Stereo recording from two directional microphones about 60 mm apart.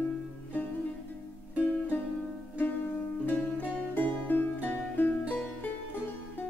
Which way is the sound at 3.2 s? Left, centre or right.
Left.